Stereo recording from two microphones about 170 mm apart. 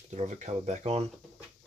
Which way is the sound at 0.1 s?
40° right (ahead or behind).